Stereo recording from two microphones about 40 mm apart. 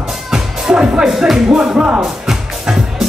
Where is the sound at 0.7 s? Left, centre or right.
Right.